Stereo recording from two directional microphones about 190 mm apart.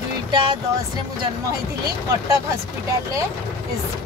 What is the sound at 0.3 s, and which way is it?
Speech, 25° right (ahead or behind).